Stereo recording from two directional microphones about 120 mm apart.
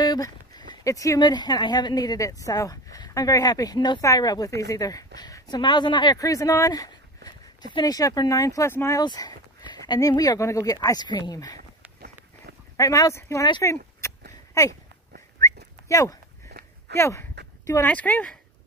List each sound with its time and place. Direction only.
0.0 s speech: 35° left (ahead or behind)
6.1 s speech: 30° left (ahead or behind)
9.0 s speech: 35° left (ahead or behind)
12.7 s speech: 30° left (ahead or behind)
13.6 s a sound: 25° left (ahead or behind)
15.4 s whistling: 30° left (ahead or behind)
16.9 s a sound: 20° left (ahead or behind)
17.8 s speech: 15° left (ahead or behind)